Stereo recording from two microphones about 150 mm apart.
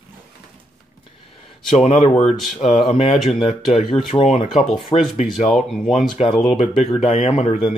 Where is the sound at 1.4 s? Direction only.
50° left (ahead or behind).